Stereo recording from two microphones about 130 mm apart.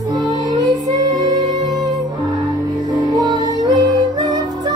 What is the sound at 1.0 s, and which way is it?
Music, 35° right (ahead or behind).